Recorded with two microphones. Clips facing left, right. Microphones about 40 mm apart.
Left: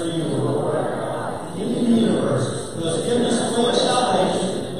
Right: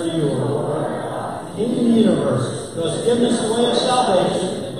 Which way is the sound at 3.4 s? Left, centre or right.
Centre.